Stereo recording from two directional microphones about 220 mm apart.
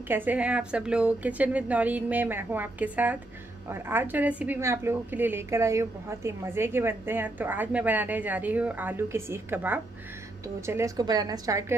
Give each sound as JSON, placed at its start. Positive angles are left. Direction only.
{"t": 0.1, "sound": "a woman's voice", "side_deg": -10}